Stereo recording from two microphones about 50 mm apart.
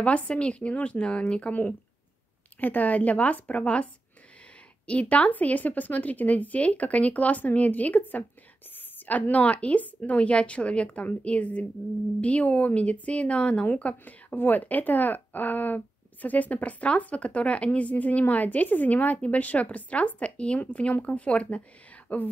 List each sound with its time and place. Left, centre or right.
0.0 s a woman's voice: left
2.6 s a woman's voice: left